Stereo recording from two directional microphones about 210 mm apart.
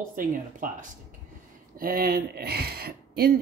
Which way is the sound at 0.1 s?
40° right (ahead or behind).